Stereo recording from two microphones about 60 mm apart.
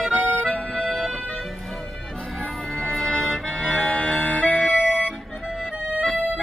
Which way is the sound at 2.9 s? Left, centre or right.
Centre.